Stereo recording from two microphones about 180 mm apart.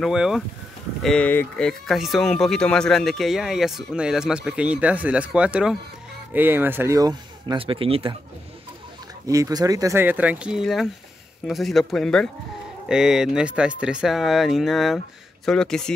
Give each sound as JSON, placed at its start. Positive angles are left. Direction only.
{"t": 0.0, "sound": "speech", "side_deg": -5}
{"t": 9.3, "sound": "speech", "side_deg": -20}